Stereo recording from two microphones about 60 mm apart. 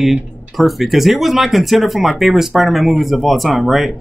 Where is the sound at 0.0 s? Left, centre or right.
Centre.